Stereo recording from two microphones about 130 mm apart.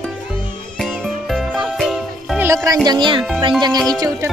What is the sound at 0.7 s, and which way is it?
Music, centre (ahead or behind).